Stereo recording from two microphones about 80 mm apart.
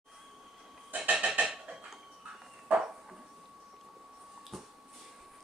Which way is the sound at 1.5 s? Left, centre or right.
Centre.